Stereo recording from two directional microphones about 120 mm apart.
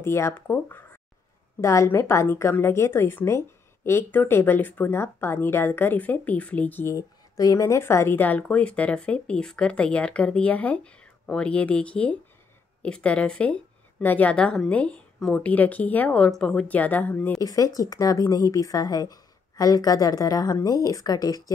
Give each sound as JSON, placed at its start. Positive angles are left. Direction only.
{"t": 0.0, "sound": "a woman's voice", "side_deg": 20}
{"t": 17.4, "sound": "a woman's voice", "side_deg": 30}